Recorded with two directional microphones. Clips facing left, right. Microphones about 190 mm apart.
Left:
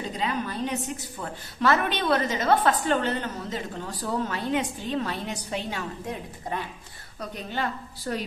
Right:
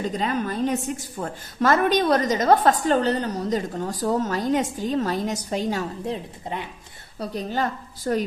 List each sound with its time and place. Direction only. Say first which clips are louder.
0.2 s a woman's voice: right 2 dB; 45° right (ahead or behind); by 6.6 s 30° right (ahead or behind)
7.2 s a woman's voice: right 5 dB; 40° right (ahead or behind)